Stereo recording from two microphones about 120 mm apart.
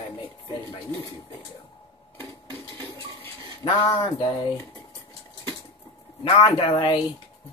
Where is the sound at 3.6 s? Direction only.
25° left (ahead or behind).